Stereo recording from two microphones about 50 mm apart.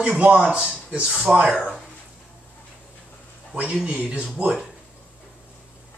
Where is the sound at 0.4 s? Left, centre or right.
Centre.